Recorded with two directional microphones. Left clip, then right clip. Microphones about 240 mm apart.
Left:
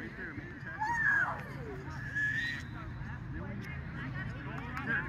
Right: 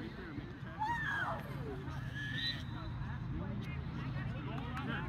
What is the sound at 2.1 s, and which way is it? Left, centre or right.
Horse, centre.